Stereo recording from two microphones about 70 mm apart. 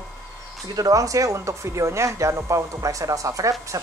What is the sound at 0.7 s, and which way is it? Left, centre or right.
Speech, right.